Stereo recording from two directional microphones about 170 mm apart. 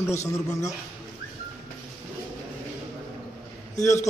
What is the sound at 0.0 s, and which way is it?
Speech, 15° left (ahead or behind).